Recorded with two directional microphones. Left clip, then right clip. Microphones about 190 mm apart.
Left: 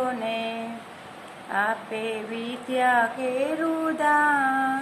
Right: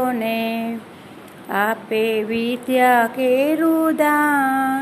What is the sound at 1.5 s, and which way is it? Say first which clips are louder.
Speech: right 5 dB; 45° right (ahead or behind).